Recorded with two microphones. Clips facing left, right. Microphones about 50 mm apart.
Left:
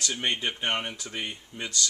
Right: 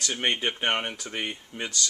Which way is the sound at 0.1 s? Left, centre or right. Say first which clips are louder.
Right 4 dB; right.